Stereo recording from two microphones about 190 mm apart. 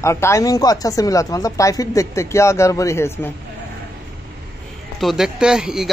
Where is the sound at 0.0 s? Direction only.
15° left (ahead or behind).